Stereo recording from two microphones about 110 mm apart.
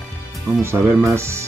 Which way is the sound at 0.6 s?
20° right (ahead or behind).